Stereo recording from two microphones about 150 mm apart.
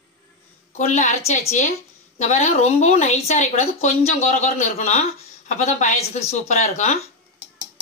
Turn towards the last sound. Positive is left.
turn(degrees=50)  # may be behind; listen again after turning